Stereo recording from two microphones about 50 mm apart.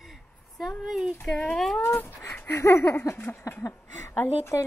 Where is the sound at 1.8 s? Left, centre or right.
Left.